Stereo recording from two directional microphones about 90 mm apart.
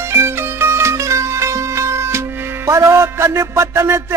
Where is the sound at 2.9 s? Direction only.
30° right (ahead or behind).